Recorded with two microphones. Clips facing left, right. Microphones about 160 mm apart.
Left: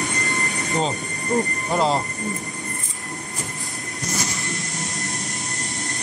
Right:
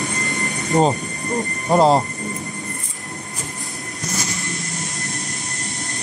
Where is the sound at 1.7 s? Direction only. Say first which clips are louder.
Right 7 dB; 40° right (ahead or behind).